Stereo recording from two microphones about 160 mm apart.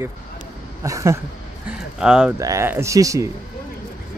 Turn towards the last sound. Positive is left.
turn(degrees=-20)  # may be behind; listen again after turning